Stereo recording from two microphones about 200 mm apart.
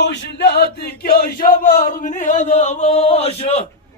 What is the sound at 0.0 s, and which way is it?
Male singing, 55° left (ahead or behind).